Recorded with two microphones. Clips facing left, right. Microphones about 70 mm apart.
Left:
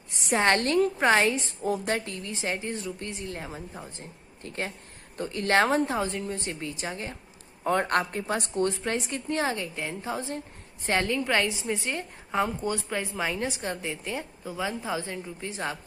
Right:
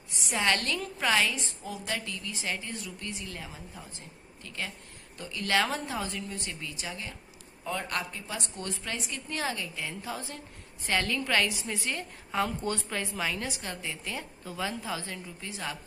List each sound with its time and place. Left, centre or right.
0.1 s a woman's voice: left
14.4 s a woman's voice: centre
14.7 s a woman's voice: left